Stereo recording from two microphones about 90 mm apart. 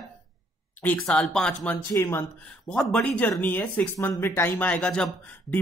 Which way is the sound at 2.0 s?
30° left (ahead or behind).